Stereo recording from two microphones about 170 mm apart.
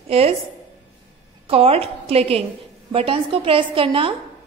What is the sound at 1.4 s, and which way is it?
A woman's voice, 35° right (ahead or behind).